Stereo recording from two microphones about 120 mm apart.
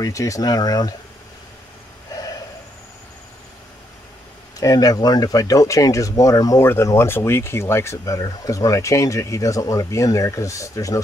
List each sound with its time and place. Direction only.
0.0 s speech: 25° left (ahead or behind)
4.6 s speech: 30° left (ahead or behind)